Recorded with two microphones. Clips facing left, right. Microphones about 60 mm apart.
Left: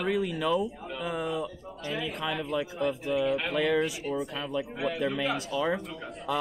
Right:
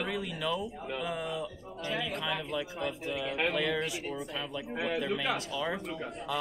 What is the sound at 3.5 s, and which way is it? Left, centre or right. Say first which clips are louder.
Speech: left 5 dB; centre.